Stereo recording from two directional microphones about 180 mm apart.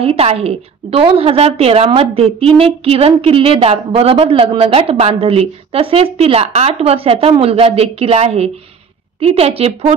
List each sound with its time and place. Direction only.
0.0 s a woman's voice: 35° right (ahead or behind)